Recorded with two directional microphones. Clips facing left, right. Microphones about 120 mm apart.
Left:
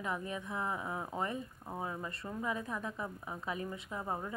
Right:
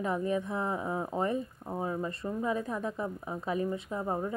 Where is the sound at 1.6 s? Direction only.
15° right (ahead or behind).